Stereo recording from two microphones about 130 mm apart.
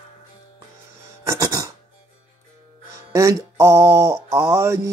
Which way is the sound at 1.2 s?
25° right (ahead or behind).